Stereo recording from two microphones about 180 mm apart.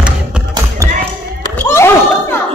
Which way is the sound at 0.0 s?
5° right (ahead or behind).